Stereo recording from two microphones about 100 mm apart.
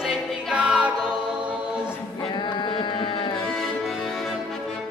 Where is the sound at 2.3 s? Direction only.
50° left (ahead or behind).